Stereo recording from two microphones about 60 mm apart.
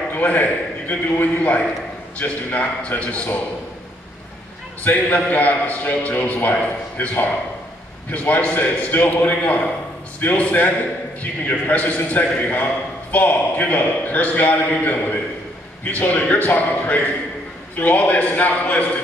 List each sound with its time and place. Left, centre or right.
0.1 s a man's voice: left
4.8 s a man's voice: left